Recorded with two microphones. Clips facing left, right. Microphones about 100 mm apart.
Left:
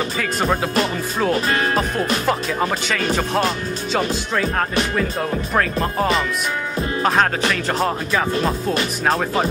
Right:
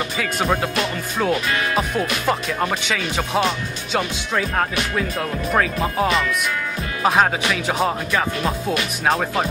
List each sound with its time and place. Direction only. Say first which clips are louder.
0.2 s speech: even; centre (ahead or behind)
1.3 s speech: left 3 dB; 35° left (ahead or behind)
2.2 s speech: left 1 dB; centre (ahead or behind)
5.5 s speech: right 2 dB; centre (ahead or behind)